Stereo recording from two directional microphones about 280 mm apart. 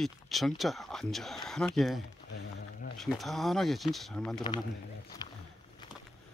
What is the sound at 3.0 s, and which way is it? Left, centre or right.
Speech, centre.